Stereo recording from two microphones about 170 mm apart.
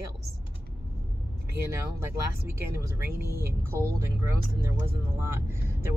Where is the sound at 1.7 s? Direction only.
15° right (ahead or behind).